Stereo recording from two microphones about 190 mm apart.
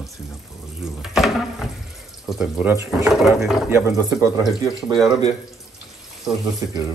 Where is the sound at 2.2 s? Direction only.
5° right (ahead or behind).